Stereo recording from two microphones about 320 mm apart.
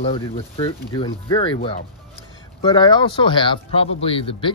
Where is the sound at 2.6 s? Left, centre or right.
Centre.